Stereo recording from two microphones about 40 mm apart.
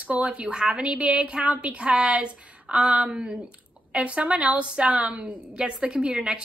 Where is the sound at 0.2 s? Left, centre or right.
Right.